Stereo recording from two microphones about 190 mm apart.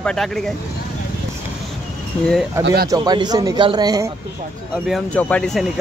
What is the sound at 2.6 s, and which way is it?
Speech, 55° right (ahead or behind).